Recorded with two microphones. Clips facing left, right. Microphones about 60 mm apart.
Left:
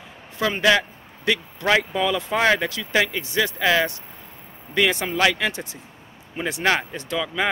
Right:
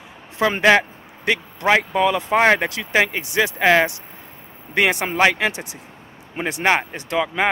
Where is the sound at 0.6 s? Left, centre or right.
Right.